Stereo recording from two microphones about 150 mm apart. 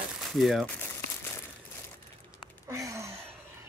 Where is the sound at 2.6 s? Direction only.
20° right (ahead or behind).